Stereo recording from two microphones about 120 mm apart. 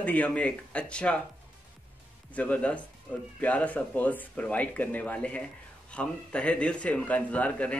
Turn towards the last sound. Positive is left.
turn(degrees=10)  # may be behind; listen again after turning